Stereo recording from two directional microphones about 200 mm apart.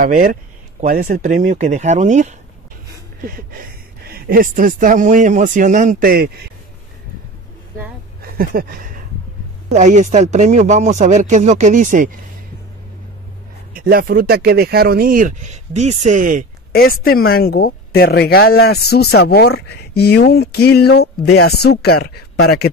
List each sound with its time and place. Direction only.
0.0 s speech: 45° right (ahead or behind)
8.2 s a sound: 45° right (ahead or behind)
9.7 s speech: 35° right (ahead or behind)
13.7 s speech: 45° right (ahead or behind)
17.0 s speech: 50° left (ahead or behind)